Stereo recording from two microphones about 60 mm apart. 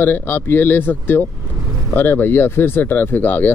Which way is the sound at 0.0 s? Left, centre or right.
Left.